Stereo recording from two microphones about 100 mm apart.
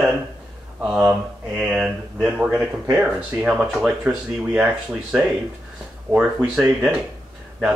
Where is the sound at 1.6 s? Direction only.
10° right (ahead or behind).